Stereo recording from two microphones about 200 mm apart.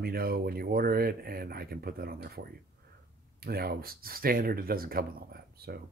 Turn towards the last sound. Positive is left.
turn(degrees=-50)  # may be behind; listen again after turning